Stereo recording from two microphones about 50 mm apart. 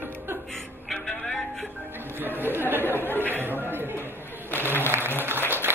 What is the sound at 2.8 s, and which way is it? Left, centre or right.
Chatter, left.